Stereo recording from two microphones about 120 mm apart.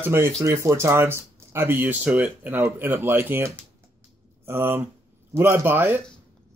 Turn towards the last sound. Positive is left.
turn(degrees=-15)  # may be behind; listen again after turning